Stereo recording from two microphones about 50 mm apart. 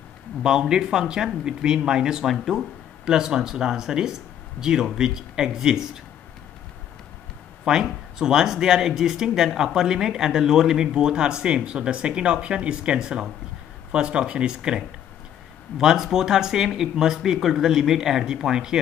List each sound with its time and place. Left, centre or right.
0.4 s speech: centre
2.2 s speech: centre
3.1 s speech: centre
7.6 s speech: centre